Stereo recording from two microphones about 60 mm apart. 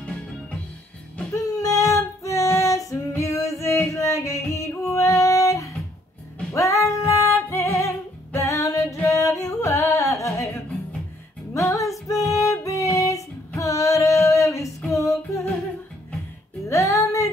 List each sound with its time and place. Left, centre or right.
1.3 s female singing: left
3.2 s music: left
6.5 s female singing: left
7.4 s music: left
9.1 s singing: left
11.5 s female singing: left
16.6 s music: left